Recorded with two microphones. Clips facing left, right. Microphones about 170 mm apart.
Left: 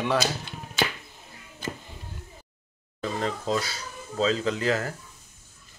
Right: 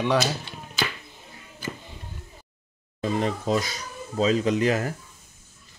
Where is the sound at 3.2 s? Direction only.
15° right (ahead or behind).